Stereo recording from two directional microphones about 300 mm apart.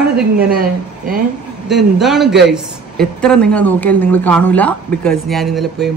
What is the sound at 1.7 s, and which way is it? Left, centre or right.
Speech, centre.